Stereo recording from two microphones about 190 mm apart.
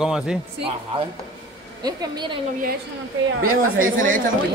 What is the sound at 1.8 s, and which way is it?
Speech, 20° right (ahead or behind).